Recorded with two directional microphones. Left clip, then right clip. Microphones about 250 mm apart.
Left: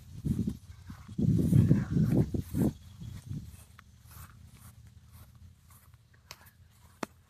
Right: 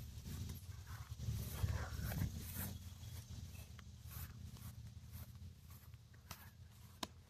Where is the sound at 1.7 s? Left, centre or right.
Centre.